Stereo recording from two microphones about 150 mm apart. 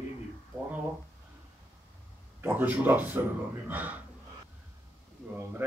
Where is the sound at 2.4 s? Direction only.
15° right (ahead or behind).